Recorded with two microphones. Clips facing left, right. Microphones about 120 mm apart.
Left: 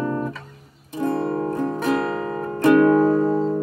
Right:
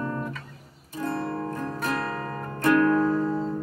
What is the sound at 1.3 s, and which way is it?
Music, 20° left (ahead or behind).